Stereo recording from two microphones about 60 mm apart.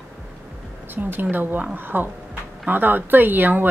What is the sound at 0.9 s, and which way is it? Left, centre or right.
Speech, right.